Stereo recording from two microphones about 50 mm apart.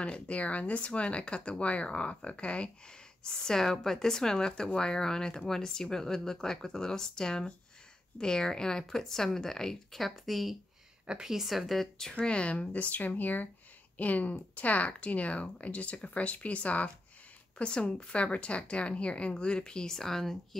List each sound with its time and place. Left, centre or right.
0.0 s speech: left; by 20.3 s centre